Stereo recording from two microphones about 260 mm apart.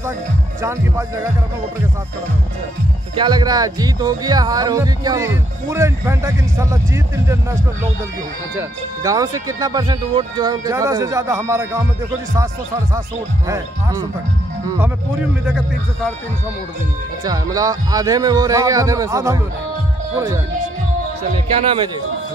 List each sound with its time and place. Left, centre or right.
0.6 s speech: centre
3.2 s speech: centre
8.5 s speech: centre
17.2 s speech: centre